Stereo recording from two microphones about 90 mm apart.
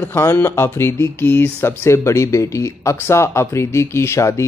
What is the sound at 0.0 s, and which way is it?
Speech, 20° left (ahead or behind).